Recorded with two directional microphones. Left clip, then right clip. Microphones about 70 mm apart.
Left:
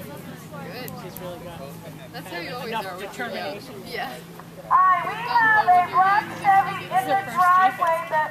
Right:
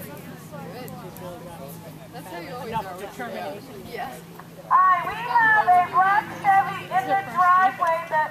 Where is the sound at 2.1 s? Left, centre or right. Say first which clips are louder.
Left 3 dB; left.